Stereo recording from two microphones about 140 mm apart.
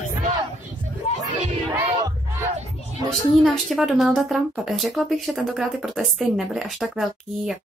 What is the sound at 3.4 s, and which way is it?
Speech, centre (ahead or behind).